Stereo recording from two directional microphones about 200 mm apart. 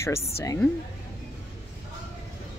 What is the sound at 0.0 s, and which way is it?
Speech, 15° left (ahead or behind).